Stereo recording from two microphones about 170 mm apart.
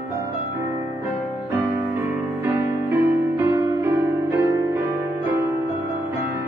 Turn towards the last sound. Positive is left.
turn(degrees=-15)  # may be behind; listen again after turning